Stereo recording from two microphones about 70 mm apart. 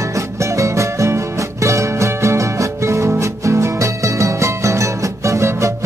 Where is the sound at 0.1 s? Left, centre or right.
Right.